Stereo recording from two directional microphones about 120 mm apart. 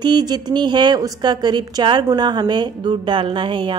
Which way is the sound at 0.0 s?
35° right (ahead or behind).